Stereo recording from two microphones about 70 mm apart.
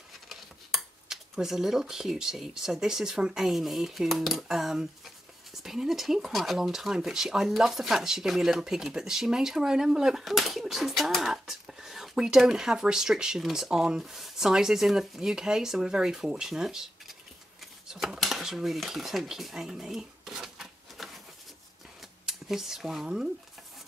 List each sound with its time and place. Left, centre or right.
0.3 s cutlery: centre
11.3 s speech: centre
22.2 s speech: centre